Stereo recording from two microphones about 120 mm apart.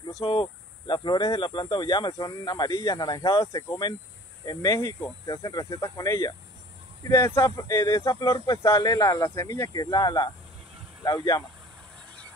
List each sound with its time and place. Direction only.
0.2 s speech: 50° left (ahead or behind)